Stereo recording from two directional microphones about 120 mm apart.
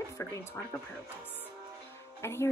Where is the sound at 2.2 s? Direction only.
20° left (ahead or behind).